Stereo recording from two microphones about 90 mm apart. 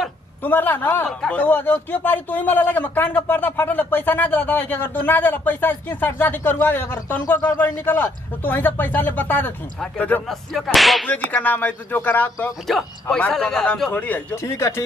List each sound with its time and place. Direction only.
0.4 s speech: 20° left (ahead or behind)
1.0 s a man's voice: 5° left (ahead or behind)
1.4 s speech: 20° left (ahead or behind)
10.2 s whip: centre (ahead or behind)
11.1 s speech: 20° left (ahead or behind)
12.7 s whip: centre (ahead or behind)
13.1 s a man's voice: 5° left (ahead or behind)
13.8 s a man's voice: 15° left (ahead or behind)
14.3 s speech: 35° left (ahead or behind)